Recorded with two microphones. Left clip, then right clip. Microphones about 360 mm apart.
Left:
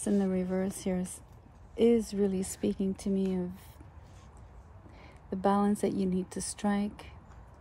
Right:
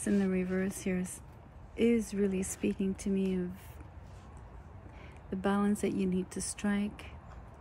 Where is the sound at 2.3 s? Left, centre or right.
Left.